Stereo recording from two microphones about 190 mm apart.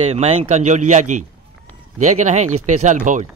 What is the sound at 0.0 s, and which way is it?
A man's voice, 35° right (ahead or behind).